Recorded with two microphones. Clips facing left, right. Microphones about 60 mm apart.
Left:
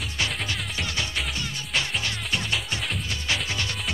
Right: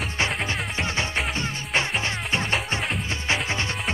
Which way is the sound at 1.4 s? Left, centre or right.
Right.